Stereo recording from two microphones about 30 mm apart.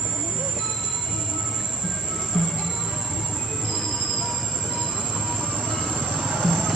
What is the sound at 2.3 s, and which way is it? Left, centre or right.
Music, centre.